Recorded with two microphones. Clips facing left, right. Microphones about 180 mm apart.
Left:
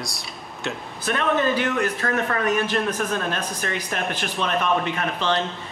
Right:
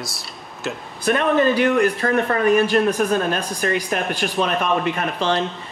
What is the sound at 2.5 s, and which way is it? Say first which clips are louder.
A man's voice: right 9 dB; 10° right (ahead or behind).